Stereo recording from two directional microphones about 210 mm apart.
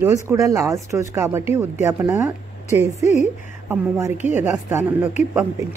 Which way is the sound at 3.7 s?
10° right (ahead or behind).